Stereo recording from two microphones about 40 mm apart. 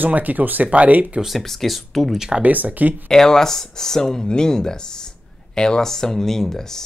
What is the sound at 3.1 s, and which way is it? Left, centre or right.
Speech, centre.